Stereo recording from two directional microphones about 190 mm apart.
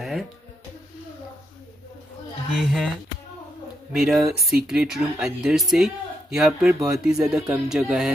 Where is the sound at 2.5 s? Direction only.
Centre (ahead or behind).